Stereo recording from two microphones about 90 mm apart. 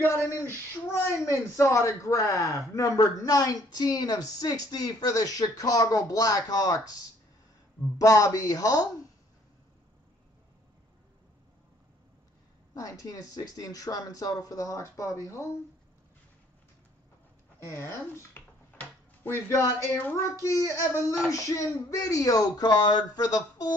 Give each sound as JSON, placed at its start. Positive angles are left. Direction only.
{"t": 0.0, "sound": "child singing", "side_deg": 30}
{"t": 1.2, "sound": "a man's voice", "side_deg": 35}
{"t": 8.0, "sound": "a man's voice", "side_deg": 40}
{"t": 12.7, "sound": "a man's voice", "side_deg": 40}
{"t": 17.6, "sound": "computer keyboard", "side_deg": 30}
{"t": 19.5, "sound": "a man's voice", "side_deg": 30}